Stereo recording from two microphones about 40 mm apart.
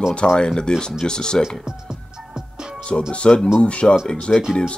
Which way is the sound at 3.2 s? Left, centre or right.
Left.